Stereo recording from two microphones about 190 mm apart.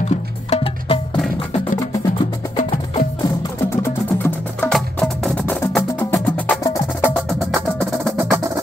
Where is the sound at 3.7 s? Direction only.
10° left (ahead or behind).